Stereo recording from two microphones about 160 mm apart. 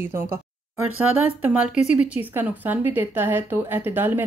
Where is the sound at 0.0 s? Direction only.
15° right (ahead or behind).